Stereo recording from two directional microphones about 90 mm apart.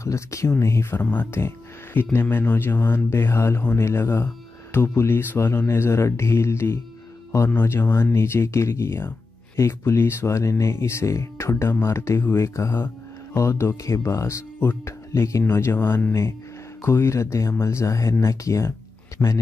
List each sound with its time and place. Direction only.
0.0 s a man's voice: 35° left (ahead or behind)